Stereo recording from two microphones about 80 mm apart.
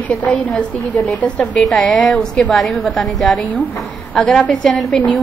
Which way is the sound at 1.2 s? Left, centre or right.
Centre.